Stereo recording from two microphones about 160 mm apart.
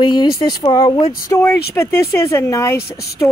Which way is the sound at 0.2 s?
25° left (ahead or behind).